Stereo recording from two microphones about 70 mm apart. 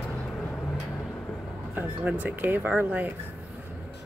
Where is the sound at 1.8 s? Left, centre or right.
Right.